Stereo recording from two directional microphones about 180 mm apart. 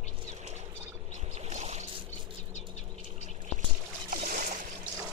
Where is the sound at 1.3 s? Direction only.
40° right (ahead or behind).